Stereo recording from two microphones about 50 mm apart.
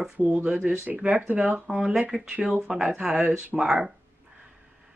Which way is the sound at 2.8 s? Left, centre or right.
Right.